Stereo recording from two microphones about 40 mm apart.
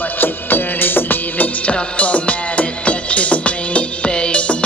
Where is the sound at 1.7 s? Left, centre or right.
Left.